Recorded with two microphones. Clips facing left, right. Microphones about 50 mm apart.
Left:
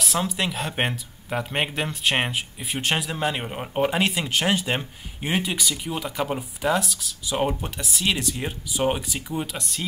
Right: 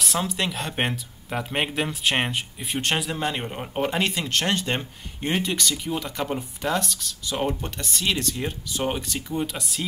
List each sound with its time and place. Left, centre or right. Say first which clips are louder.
0.0 s speech: left 1 dB; centre